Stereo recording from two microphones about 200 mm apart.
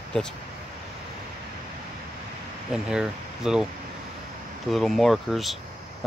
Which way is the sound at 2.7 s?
5° right (ahead or behind).